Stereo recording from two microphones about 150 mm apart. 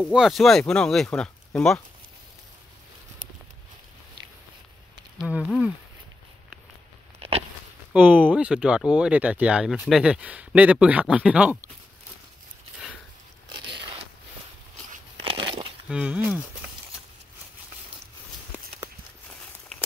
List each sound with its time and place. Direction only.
0.0 s speech: centre (ahead or behind)
7.2 s a sound: 40° right (ahead or behind)
7.9 s speech: 10° right (ahead or behind)
13.5 s biting: 30° right (ahead or behind)
15.2 s a sound: 35° right (ahead or behind)
15.9 s speech: 5° right (ahead or behind)